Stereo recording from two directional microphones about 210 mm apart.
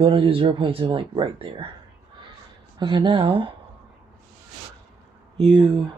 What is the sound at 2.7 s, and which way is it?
Speech, 20° right (ahead or behind).